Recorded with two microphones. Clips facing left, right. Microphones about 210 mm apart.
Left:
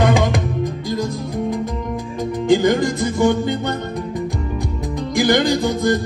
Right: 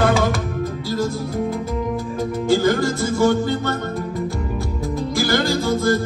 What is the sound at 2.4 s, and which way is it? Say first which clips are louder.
Music: left 3 dB; 15° left (ahead or behind).